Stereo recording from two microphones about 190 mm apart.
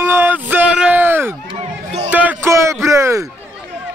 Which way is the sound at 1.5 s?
30° right (ahead or behind).